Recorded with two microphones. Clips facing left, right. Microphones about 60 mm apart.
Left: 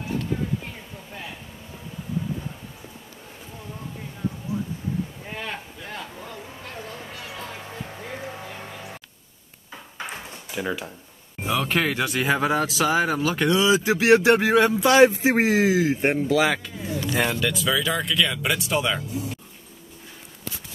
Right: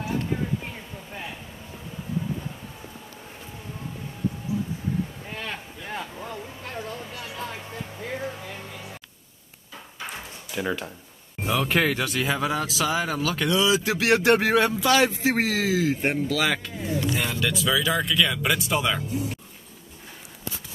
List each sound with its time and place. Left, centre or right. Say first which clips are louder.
5.3 s a sound: left 1 dB; centre
10.5 s speech: even; centre
12.0 s speech: left 3 dB; left
14.3 s speech: left 2 dB; centre
14.7 s speech: left 5 dB; left
16.5 s speech: right 1 dB; centre